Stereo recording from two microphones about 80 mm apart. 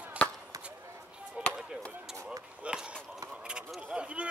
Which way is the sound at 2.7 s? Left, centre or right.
Centre.